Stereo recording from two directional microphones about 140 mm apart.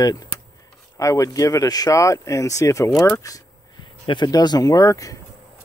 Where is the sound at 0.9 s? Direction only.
25° left (ahead or behind).